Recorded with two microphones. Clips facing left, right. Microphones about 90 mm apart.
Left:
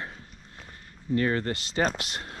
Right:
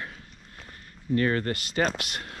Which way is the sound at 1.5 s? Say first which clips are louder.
Even; 25° left (ahead or behind).